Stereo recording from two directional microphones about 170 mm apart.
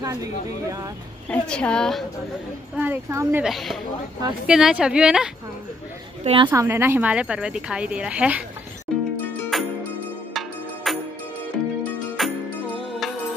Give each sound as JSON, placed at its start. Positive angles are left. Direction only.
{"t": 0.0, "sound": "speech", "side_deg": -20}
{"t": 1.3, "sound": "a woman's voice", "side_deg": 5}
{"t": 2.8, "sound": "a woman's voice", "side_deg": -15}
{"t": 3.4, "sound": "a woman's voice", "side_deg": 0}
{"t": 6.2, "sound": "a woman's voice", "side_deg": -30}
{"t": 6.5, "sound": "a woman's voice", "side_deg": -15}
{"t": 8.9, "sound": "music", "side_deg": 0}
{"t": 12.2, "sound": "music", "side_deg": 0}